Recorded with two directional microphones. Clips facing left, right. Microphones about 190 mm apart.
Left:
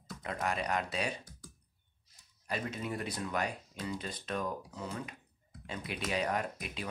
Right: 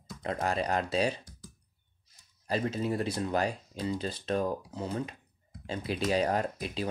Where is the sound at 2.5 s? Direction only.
30° right (ahead or behind).